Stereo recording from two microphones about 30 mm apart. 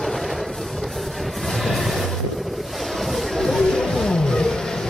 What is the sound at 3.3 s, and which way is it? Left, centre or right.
Music, centre.